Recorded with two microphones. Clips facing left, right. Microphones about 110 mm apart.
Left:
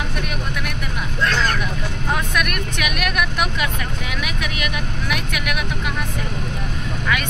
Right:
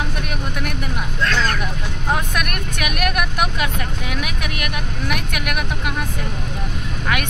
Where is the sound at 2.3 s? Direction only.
45° right (ahead or behind).